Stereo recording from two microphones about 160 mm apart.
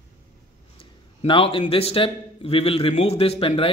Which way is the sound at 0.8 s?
35° left (ahead or behind).